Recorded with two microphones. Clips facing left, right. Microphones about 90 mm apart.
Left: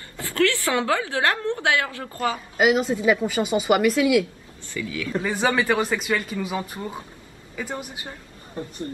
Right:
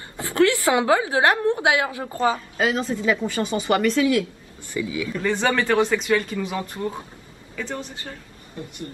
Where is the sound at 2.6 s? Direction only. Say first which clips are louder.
Left 3 dB; 10° left (ahead or behind).